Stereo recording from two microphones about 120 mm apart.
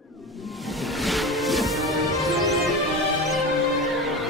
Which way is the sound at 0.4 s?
Centre (ahead or behind).